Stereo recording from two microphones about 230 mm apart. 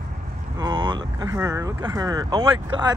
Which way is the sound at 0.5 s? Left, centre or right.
Centre.